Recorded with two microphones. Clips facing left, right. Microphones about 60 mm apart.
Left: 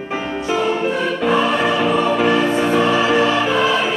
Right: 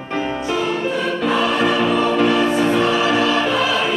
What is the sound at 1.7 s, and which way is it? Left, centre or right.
Music, centre.